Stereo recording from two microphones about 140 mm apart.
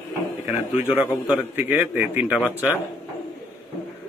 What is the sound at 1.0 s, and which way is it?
A man's voice, 10° right (ahead or behind).